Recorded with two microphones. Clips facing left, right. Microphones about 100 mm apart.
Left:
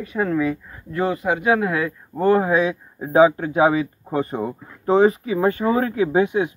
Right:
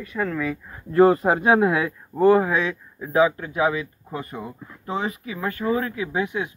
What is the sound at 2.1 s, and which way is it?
Speech, centre (ahead or behind).